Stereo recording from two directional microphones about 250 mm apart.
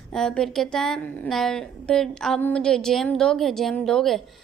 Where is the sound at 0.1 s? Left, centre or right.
Centre.